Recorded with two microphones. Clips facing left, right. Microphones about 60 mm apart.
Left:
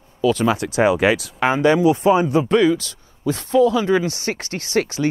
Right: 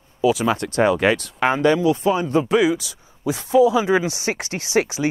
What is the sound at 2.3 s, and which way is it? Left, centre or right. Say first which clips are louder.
Speech: left 1 dB; centre.